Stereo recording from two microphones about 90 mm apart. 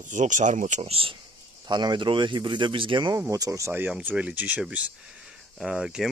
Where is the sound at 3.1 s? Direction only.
40° right (ahead or behind).